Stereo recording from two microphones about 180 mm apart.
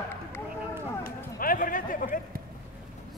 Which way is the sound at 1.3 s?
50° left (ahead or behind).